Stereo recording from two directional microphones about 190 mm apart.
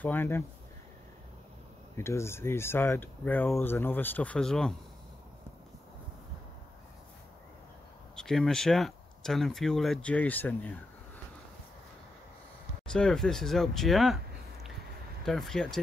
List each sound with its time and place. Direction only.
0.0 s speech: 10° left (ahead or behind)
2.0 s speech: 15° left (ahead or behind)
8.2 s speech: 5° left (ahead or behind)
12.9 s speech: 5° left (ahead or behind)